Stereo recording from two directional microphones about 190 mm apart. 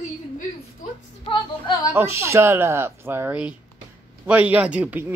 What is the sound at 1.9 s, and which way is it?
Speech, 10° right (ahead or behind).